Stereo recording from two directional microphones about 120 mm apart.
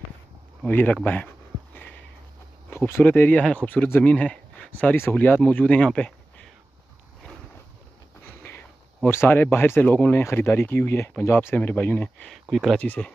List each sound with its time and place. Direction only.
0.7 s speech: 15° left (ahead or behind)
1.0 s a sound: 15° left (ahead or behind)
2.7 s speech: 15° left (ahead or behind)
8.4 s speech: 15° left (ahead or behind)
12.3 s speech: centre (ahead or behind)
12.7 s speech: 10° left (ahead or behind)